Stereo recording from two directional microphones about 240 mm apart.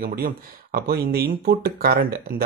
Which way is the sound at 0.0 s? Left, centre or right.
Right.